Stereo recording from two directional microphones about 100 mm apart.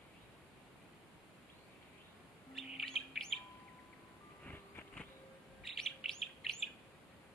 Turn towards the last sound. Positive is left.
turn(degrees=5)  # may be behind; listen again after turning